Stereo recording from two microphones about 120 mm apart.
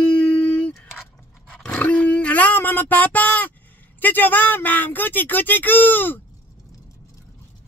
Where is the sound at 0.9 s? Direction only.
Centre (ahead or behind).